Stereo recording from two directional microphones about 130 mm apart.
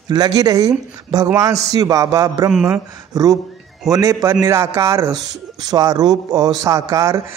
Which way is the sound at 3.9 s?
25° right (ahead or behind).